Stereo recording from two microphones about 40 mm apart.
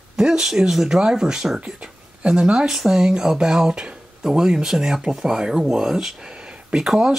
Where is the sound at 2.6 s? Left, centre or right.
Centre.